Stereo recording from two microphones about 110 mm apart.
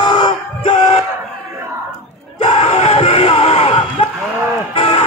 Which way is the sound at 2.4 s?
80° left.